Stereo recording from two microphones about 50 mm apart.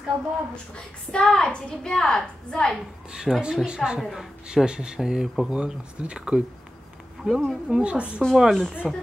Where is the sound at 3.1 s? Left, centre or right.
Centre.